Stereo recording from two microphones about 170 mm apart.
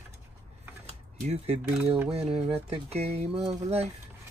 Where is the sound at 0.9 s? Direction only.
40° right (ahead or behind).